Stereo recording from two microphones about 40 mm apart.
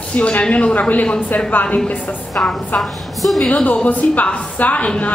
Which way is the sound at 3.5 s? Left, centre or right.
Left.